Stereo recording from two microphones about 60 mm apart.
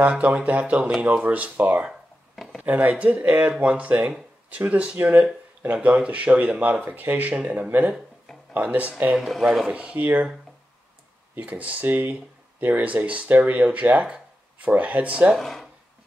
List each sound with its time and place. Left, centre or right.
0.2 s speech: right
9.1 s speech: centre
9.7 s speech: centre
11.3 s speech: right
15.3 s speech: centre